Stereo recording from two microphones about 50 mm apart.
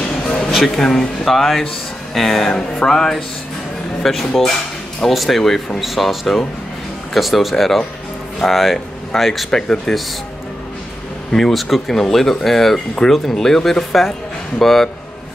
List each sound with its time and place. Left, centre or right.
0.5 s speech: centre
11.3 s speech: centre
12.7 s speech: centre